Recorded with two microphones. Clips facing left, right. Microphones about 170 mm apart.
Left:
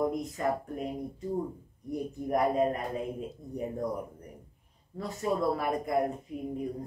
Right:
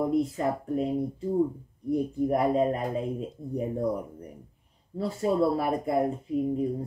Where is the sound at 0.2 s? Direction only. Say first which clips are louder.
Right 3 dB; 30° right (ahead or behind).